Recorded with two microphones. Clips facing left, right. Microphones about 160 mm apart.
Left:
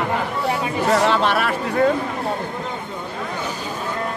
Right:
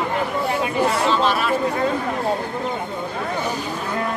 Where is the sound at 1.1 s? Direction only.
65° left (ahead or behind).